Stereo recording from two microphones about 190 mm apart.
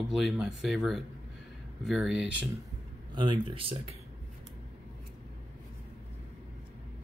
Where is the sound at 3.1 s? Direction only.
25° right (ahead or behind).